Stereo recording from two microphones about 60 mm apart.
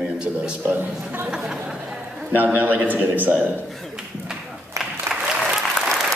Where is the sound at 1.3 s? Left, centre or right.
Centre.